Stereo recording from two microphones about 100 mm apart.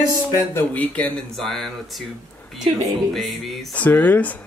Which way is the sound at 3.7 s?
15° left (ahead or behind).